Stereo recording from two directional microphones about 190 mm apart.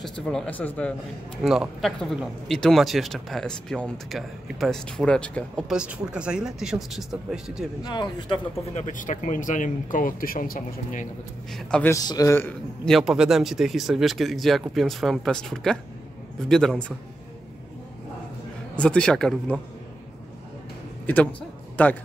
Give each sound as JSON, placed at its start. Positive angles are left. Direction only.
{"t": 0.0, "sound": "speech", "side_deg": 5}
{"t": 7.8, "sound": "speech", "side_deg": 25}
{"t": 8.7, "sound": "speech", "side_deg": 40}
{"t": 11.5, "sound": "speech", "side_deg": 5}
{"t": 11.9, "sound": "speech", "side_deg": 15}
{"t": 18.8, "sound": "speech", "side_deg": 5}
{"t": 21.1, "sound": "speech", "side_deg": 10}